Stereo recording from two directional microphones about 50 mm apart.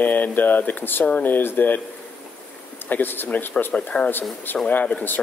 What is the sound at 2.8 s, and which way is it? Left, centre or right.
Speech, left.